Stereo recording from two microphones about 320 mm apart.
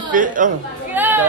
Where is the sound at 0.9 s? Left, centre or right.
Centre.